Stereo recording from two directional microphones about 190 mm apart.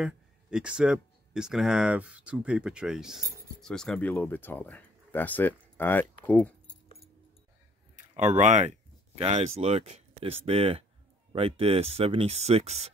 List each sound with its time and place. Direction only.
0.0 s speech: 5° right (ahead or behind)
8.2 s speech: 40° right (ahead or behind)